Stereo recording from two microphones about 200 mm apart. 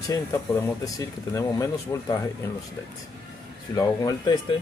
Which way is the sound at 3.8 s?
20° left (ahead or behind).